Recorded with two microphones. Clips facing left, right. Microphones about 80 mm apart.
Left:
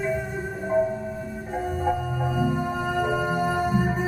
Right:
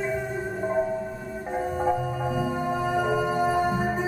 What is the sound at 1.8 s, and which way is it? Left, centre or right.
Music, centre.